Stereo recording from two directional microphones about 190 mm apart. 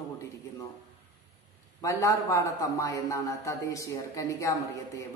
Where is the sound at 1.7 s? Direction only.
15° left (ahead or behind).